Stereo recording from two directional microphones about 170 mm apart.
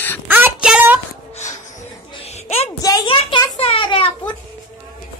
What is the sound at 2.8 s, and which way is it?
A child's voice, 20° left (ahead or behind).